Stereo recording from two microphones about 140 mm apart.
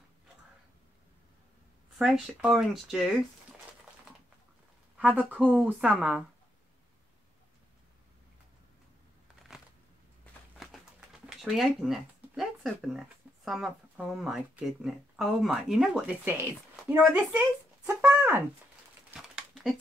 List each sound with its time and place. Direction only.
2.0 s speech: 5° right (ahead or behind)
4.9 s a woman's voice: 10° right (ahead or behind)
9.5 s shuffling cards: 5° right (ahead or behind)
10.2 s a sound: centre (ahead or behind)
13.5 s speech: centre (ahead or behind); by 18.4 s 15° right (ahead or behind)
19.0 s a sound: 5° right (ahead or behind)